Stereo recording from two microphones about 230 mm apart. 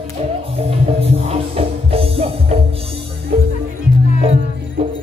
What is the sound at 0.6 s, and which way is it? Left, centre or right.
Music, right.